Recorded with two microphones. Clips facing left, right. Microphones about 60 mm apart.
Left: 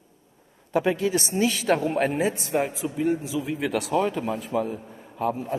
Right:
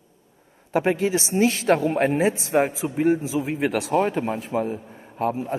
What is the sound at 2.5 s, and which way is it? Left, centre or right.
A man's voice, right.